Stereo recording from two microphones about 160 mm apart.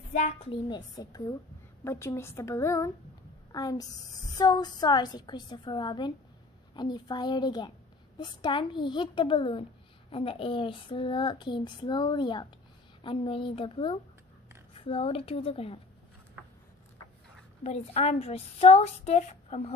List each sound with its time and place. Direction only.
0.1 s a woman's voice: 45° left (ahead or behind)
17.6 s a woman's voice: 40° left (ahead or behind)